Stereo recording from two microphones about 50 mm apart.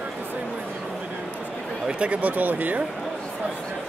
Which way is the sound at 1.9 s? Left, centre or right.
Right.